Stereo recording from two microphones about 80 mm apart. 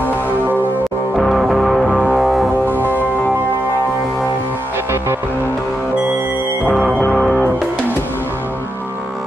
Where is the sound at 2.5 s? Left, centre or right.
Right.